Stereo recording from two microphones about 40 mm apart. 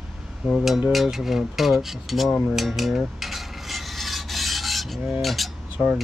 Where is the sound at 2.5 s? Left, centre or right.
Centre.